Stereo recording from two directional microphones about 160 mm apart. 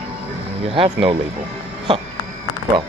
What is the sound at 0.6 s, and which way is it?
Speech, 35° right (ahead or behind).